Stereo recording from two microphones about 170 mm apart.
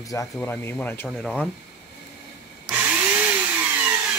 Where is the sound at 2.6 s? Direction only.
10° right (ahead or behind).